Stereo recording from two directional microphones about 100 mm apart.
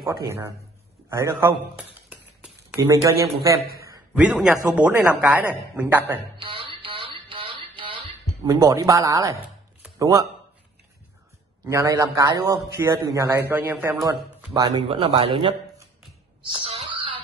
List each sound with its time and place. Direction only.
0.0 s a man's voice: 30° right (ahead or behind)
1.8 s a sound: 15° right (ahead or behind)
2.9 s a man's voice: 35° right (ahead or behind)
4.1 s a man's voice: 5° right (ahead or behind)
6.3 s a sound: 60° right (ahead or behind)
8.5 s a man's voice: 40° right (ahead or behind)
11.6 s a man's voice: 35° right (ahead or behind); by 13.9 s 20° right (ahead or behind)
14.0 s speech: 40° right (ahead or behind)
14.9 s a man's voice: 70° right (ahead or behind)
16.6 s wail: 65° right (ahead or behind)